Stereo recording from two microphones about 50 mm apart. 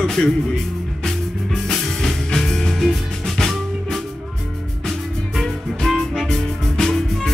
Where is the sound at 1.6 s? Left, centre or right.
Centre.